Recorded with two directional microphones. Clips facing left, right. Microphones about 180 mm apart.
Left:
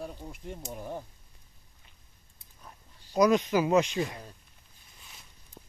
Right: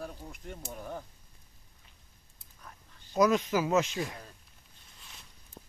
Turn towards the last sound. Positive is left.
turn(degrees=0)  # may be behind; listen again after turning